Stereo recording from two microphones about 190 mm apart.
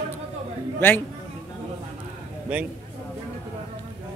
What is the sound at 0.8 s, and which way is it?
Speech, 10° left (ahead or behind).